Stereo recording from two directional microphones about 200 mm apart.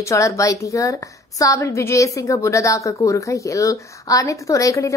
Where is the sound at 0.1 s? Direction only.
15° left (ahead or behind).